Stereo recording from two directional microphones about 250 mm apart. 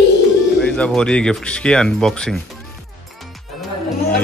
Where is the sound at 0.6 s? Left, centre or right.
Centre.